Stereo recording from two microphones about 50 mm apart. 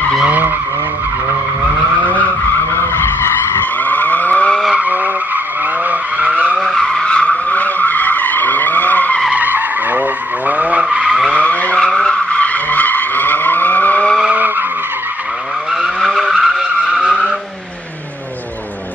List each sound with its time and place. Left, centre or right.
3.8 s vehicle: left
4.7 s skidding: right
5.9 s vehicle: right
6.6 s vehicle: centre
6.9 s vehicle: centre; by 9.2 s left
9.3 s vehicle: right
10.8 s skidding: centre
11.3 s vehicle: left
11.8 s vehicle: centre
12.3 s vehicle: left
16.0 s vehicle: centre